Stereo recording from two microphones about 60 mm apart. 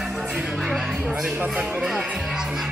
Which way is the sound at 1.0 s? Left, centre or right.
Centre.